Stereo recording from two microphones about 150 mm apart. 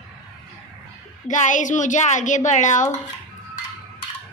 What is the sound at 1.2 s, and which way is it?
A woman's voice, 55° left (ahead or behind).